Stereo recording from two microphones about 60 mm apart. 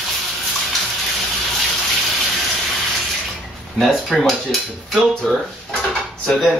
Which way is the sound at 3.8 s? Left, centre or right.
Centre.